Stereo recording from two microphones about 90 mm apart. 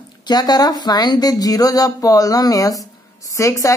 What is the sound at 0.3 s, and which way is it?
Speech, 50° left (ahead or behind).